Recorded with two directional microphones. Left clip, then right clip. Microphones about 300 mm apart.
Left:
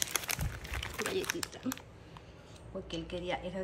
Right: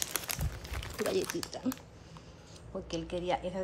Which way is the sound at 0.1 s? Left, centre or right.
Centre.